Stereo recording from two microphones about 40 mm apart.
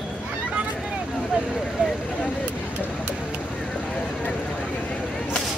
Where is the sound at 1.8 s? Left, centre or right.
Right.